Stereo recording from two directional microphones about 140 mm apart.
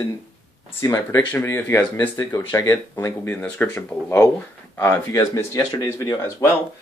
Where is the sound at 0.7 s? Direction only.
20° left (ahead or behind).